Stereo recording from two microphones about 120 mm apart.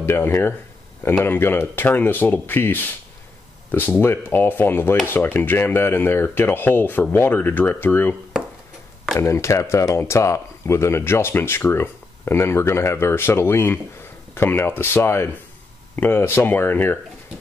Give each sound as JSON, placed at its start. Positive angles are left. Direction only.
{"t": 0.0, "sound": "speech", "side_deg": 20}
{"t": 4.0, "sound": "speech", "side_deg": 20}
{"t": 9.2, "sound": "speech", "side_deg": 25}